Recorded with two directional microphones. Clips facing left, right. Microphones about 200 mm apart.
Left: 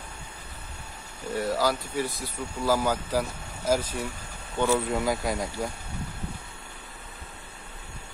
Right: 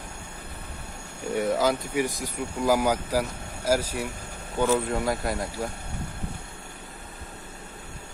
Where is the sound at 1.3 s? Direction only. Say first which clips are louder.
Right 2 dB; 20° right (ahead or behind); by 5.7 s centre (ahead or behind).